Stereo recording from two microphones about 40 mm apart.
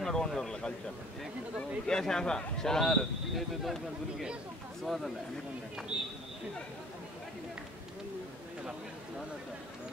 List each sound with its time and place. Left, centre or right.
0.0 s a sound: centre
1.9 s a man's voice: centre
4.8 s speech: centre
5.9 s speech: right